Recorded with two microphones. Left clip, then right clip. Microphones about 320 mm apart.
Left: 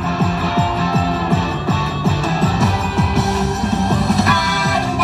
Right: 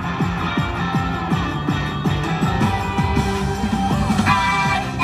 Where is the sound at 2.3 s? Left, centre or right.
Centre.